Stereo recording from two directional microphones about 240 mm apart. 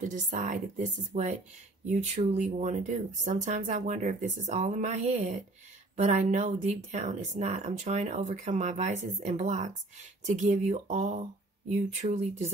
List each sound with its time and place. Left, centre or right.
0.1 s speech: right